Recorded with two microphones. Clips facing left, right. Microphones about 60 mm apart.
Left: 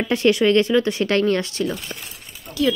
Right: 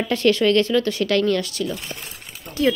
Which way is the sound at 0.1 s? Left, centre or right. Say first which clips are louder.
Left 1 dB; centre.